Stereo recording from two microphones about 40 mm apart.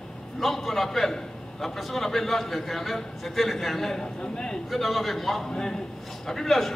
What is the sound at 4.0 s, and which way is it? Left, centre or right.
Speech, centre.